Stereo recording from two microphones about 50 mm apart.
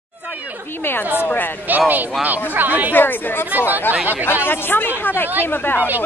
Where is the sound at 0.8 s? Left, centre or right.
Left.